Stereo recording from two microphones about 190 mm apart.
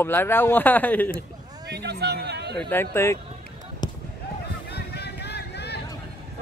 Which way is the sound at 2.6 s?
10° left (ahead or behind).